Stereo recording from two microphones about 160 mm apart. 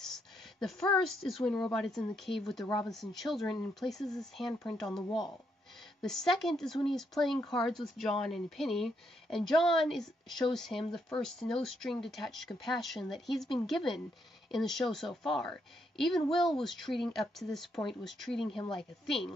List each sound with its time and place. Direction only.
0.0 s a woman's voice: centre (ahead or behind)
2.6 s speech: 20° left (ahead or behind)
2.9 s a woman's voice: centre (ahead or behind)
6.0 s a woman's voice: centre (ahead or behind)